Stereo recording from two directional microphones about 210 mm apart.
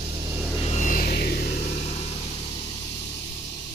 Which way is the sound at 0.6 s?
30° left (ahead or behind).